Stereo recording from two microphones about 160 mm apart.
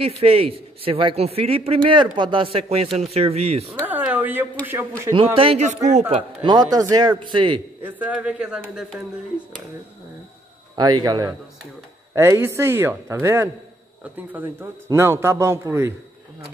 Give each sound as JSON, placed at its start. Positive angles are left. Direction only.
{"t": 0.2, "sound": "speech", "side_deg": -40}
{"t": 3.8, "sound": "a sound", "side_deg": -10}
{"t": 4.6, "sound": "a man's voice", "side_deg": -15}
{"t": 5.1, "sound": "speech", "side_deg": -35}
{"t": 6.4, "sound": "a man's voice", "side_deg": -25}
{"t": 7.8, "sound": "a man's voice", "side_deg": -10}
{"t": 10.8, "sound": "a man's voice", "side_deg": -25}